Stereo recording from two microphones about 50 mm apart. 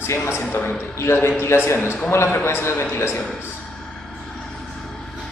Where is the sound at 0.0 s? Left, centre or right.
Left.